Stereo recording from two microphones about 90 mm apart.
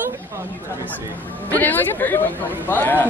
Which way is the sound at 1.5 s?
20° left (ahead or behind).